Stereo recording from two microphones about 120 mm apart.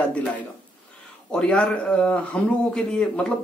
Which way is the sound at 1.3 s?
10° left (ahead or behind).